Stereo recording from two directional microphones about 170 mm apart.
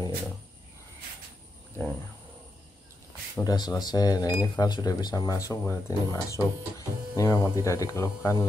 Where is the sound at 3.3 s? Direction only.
25° left (ahead or behind).